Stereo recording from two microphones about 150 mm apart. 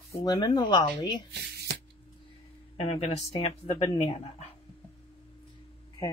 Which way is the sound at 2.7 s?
45° left (ahead or behind).